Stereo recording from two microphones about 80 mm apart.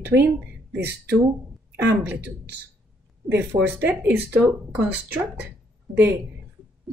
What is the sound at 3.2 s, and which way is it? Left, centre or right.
A woman's voice, right.